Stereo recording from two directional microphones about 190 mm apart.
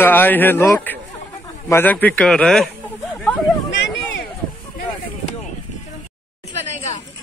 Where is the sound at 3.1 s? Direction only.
5° left (ahead or behind).